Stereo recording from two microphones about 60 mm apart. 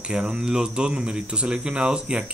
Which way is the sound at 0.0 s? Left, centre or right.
Centre.